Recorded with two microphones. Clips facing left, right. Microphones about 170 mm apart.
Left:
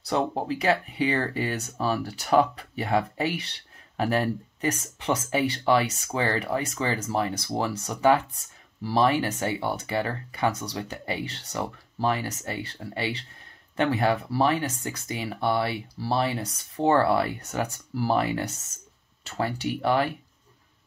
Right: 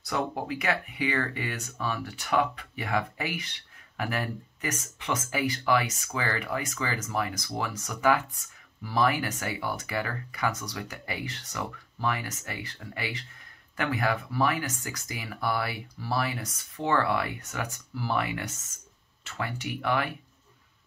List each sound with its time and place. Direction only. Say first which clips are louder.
0.0 s speech: left 4 dB; 30° left (ahead or behind)